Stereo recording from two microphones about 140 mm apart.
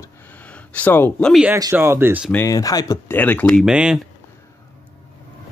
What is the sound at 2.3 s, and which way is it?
Speech, 25° left (ahead or behind).